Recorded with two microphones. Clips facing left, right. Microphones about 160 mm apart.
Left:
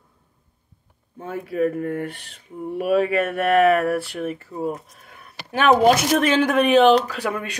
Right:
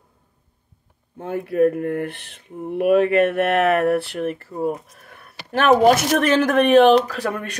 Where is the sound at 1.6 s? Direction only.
55° right (ahead or behind).